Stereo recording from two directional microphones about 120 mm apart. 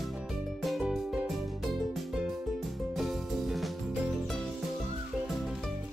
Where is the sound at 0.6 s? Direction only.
Centre (ahead or behind).